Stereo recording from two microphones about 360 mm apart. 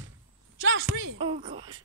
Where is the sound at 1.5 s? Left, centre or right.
Right.